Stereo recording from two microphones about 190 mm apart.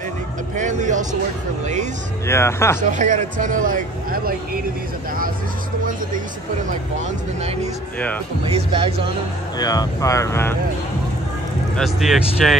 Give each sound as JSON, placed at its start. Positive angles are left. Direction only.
{"t": 0.6, "sound": "speech", "side_deg": -40}
{"t": 2.2, "sound": "speech", "side_deg": 15}
{"t": 2.8, "sound": "speech", "side_deg": -40}
{"t": 8.5, "sound": "speech", "side_deg": -30}
{"t": 9.6, "sound": "speech", "side_deg": 20}
{"t": 11.7, "sound": "speech", "side_deg": 0}